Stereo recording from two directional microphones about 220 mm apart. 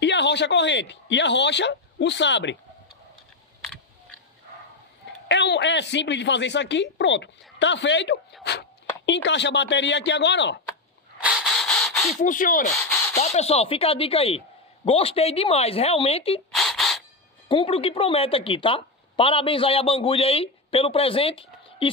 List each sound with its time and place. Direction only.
0.0 s speech: 50° left (ahead or behind)
5.3 s speech: 50° left (ahead or behind)
11.1 s a sound: 5° right (ahead or behind)
12.2 s a woman's voice: 40° left (ahead or behind)
16.5 s a sound: centre (ahead or behind)
17.5 s a woman's voice: 25° left (ahead or behind)